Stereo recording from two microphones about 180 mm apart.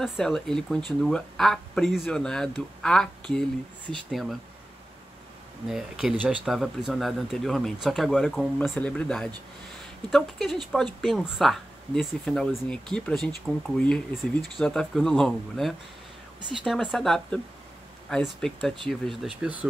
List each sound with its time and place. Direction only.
0.0 s speech: centre (ahead or behind)
5.7 s speech: centre (ahead or behind)